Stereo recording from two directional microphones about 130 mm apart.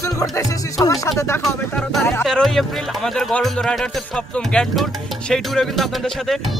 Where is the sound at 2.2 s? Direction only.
Centre (ahead or behind).